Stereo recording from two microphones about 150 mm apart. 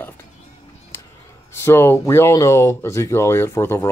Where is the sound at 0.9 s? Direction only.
15° left (ahead or behind).